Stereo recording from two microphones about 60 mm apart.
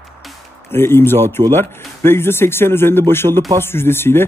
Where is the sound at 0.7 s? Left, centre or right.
Left.